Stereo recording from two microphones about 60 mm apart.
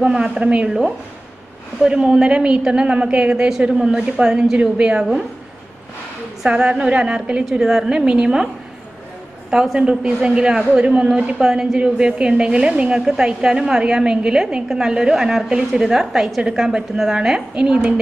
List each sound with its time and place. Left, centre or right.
0.0 s a woman's voice: centre
0.7 s a woman's voice: centre
6.4 s a woman's voice: centre
7.6 s a woman's voice: centre
9.5 s a woman's voice: centre